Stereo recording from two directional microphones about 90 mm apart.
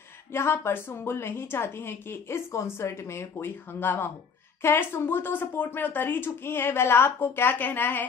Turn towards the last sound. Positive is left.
turn(degrees=20)  # may be behind; listen again after turning